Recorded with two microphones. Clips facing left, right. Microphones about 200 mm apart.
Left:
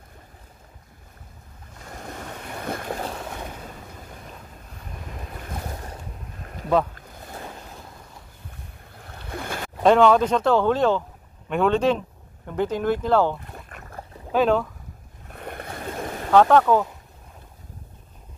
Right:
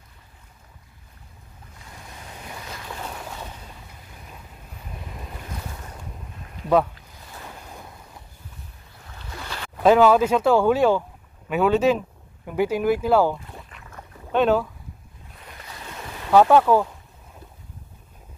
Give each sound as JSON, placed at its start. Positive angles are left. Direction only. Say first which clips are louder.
{"t": 1.9, "sound": "boat", "louder": "left 7 dB", "side_deg": 50}
{"t": 8.9, "sound": "boat", "louder": "left 5 dB", "side_deg": 55}
{"t": 9.8, "sound": "speech", "louder": "right 1 dB", "side_deg": -5}
{"t": 13.7, "sound": "boat", "louder": "left 4 dB", "side_deg": 50}
{"t": 14.3, "sound": "speech", "louder": "right 1 dB", "side_deg": 0}
{"t": 15.2, "sound": "boat", "louder": "left 9 dB", "side_deg": 60}
{"t": 16.3, "sound": "speech", "louder": "right 1 dB", "side_deg": -10}